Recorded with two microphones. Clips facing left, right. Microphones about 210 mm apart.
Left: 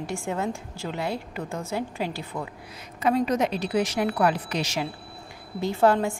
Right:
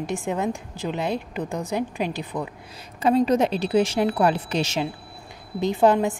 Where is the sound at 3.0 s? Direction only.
30° right (ahead or behind).